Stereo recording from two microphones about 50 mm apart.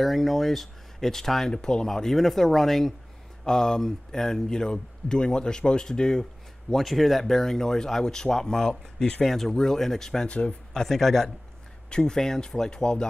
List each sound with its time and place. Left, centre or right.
0.0 s speech: centre
6.7 s speech: centre
10.2 s speech: left
10.7 s speech: centre